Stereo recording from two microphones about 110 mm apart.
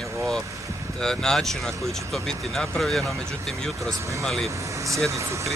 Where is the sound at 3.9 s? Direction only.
30° right (ahead or behind).